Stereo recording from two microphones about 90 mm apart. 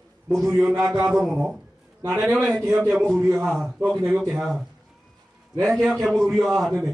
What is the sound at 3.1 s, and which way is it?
Speech, 25° right (ahead or behind).